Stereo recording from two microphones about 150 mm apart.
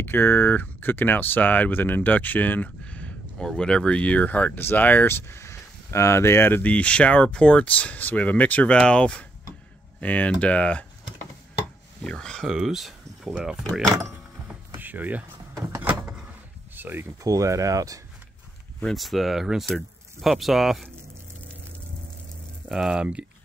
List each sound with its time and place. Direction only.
0.0 s speech: 15° left (ahead or behind)
12.0 s speech: 5° left (ahead or behind)
14.8 s speech: 10° right (ahead or behind)
15.7 s door: 10° right (ahead or behind)
16.7 s speech: 15° right (ahead or behind)
18.8 s speech: centre (ahead or behind)
22.7 s speech: 5° right (ahead or behind)